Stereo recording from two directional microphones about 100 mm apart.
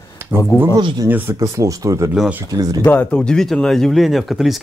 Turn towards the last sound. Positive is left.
turn(degrees=0)  # may be behind; listen again after turning